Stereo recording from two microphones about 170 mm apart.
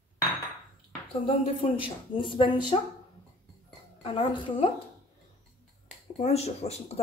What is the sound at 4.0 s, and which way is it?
Speech, 30° left (ahead or behind).